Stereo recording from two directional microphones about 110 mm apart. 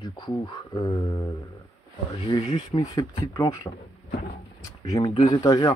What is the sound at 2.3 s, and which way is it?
Speech, 40° left (ahead or behind).